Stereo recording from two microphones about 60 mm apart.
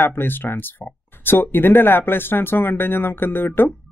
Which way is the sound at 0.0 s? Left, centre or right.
Left.